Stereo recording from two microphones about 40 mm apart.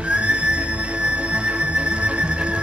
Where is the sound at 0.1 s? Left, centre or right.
Right.